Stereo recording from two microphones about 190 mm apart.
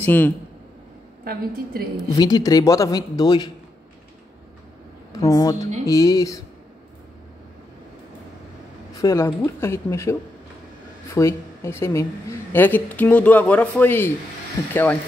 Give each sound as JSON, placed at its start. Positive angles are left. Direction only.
{"t": 0.0, "sound": "speech", "side_deg": 10}
{"t": 1.2, "sound": "a woman's voice", "side_deg": -50}
{"t": 2.1, "sound": "speech", "side_deg": 20}
{"t": 5.2, "sound": "a woman's voice", "side_deg": 20}
{"t": 8.9, "sound": "a woman's voice", "side_deg": 15}
{"t": 11.1, "sound": "a woman's voice", "side_deg": 15}